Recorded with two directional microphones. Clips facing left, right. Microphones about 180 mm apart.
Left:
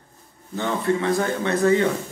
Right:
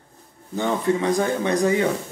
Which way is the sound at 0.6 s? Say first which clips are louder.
Right 1 dB; 15° right (ahead or behind).